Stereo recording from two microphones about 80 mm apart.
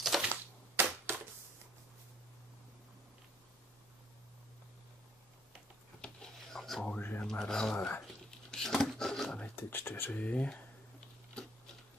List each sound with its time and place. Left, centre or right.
0.0 s typewriter: centre
0.3 s cap gun: right
5.9 s a sound: centre
7.0 s speech: left
7.2 s speech: centre
7.7 s speech: left
8.3 s a sound: centre
9.6 s speech: left